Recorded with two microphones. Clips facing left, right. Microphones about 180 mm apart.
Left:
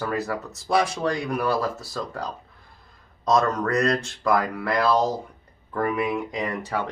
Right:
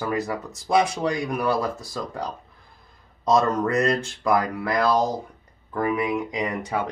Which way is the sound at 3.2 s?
20° right (ahead or behind).